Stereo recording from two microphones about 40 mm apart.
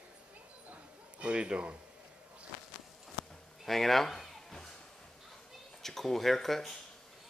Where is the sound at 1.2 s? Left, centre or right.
Right.